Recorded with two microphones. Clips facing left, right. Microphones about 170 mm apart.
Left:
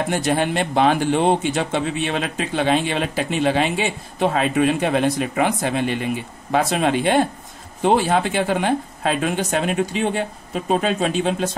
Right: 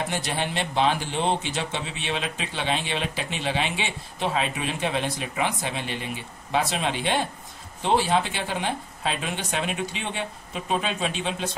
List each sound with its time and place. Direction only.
0.1 s speech: 50° left (ahead or behind)